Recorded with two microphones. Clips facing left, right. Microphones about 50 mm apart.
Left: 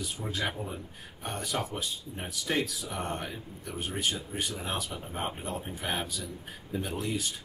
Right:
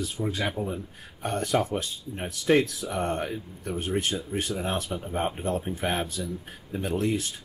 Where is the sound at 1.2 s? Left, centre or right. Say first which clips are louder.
Right 8 dB; right.